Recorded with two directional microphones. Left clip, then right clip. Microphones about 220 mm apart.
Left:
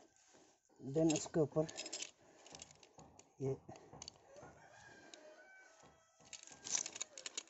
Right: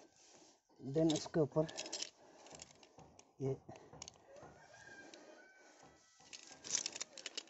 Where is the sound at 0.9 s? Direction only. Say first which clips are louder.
Even; 5° right (ahead or behind).